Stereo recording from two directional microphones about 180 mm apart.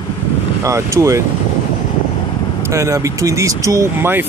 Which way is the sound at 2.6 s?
15° right (ahead or behind).